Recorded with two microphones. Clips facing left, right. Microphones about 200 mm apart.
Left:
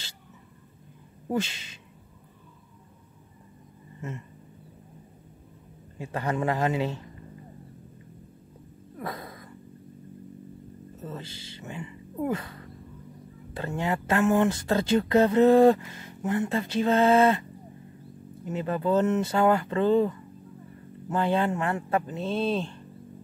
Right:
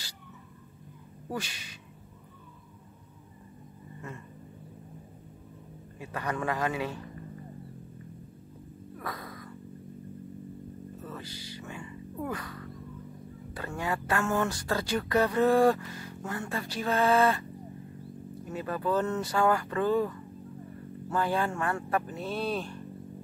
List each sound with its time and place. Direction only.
1.3 s speech: 25° left (ahead or behind)
5.9 s speech: 25° left (ahead or behind)
9.0 s cat: 25° left (ahead or behind)
11.0 s speech: 25° left (ahead or behind)
18.5 s speech: 25° left (ahead or behind)